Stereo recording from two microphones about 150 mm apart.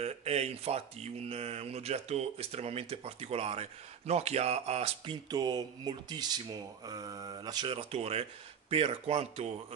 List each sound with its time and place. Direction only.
0.0 s speech: 45° right (ahead or behind)
5.3 s speech: 25° right (ahead or behind); by 9.5 s 45° right (ahead or behind)